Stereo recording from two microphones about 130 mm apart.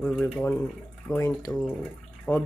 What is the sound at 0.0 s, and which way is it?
Speech, 10° left (ahead or behind).